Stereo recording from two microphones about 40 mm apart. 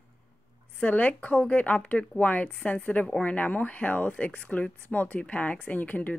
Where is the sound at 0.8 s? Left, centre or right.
Left.